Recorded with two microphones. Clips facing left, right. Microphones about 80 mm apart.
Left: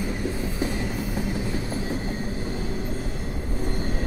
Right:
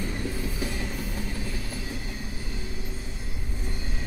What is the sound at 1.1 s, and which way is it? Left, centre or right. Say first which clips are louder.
Train: left 6 dB; left.